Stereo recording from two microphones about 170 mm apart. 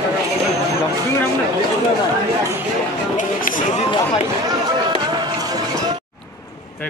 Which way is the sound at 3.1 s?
50° left (ahead or behind).